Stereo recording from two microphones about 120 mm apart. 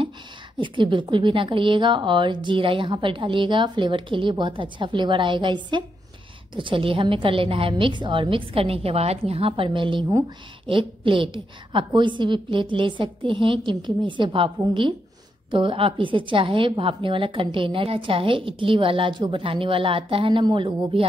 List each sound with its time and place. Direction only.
0.6 s a woman's voice: 45° right (ahead or behind)